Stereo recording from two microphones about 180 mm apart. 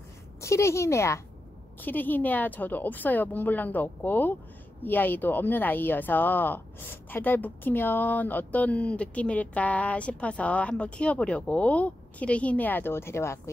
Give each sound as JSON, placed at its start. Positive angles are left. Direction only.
{"t": 0.4, "sound": "speech", "side_deg": 15}